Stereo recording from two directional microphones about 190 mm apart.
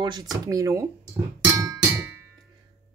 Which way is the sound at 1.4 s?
15° right (ahead or behind).